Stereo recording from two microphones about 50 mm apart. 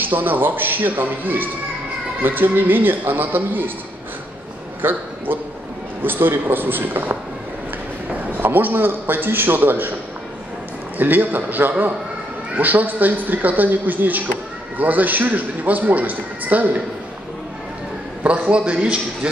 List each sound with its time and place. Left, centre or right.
0.0 s a man's voice: right
4.8 s a man's voice: right
11.0 s a man's voice: right
18.2 s a man's voice: right